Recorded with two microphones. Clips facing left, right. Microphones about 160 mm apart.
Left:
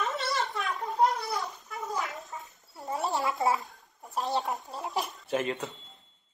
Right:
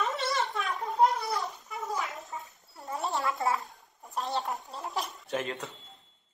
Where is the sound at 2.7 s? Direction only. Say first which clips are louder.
Left 3 dB; 20° left (ahead or behind).